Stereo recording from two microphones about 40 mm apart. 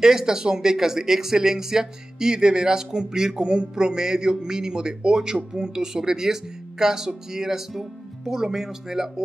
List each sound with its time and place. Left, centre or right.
0.0 s a man's voice: centre